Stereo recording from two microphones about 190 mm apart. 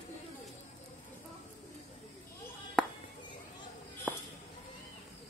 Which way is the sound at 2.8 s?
5° left (ahead or behind).